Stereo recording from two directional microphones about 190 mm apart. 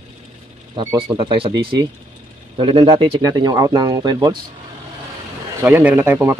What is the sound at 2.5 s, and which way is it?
Speech, 25° right (ahead or behind).